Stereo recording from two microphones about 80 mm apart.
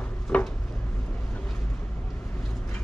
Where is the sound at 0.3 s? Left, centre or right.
Centre.